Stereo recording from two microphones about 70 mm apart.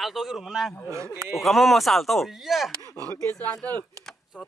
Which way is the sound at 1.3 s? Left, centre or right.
Centre.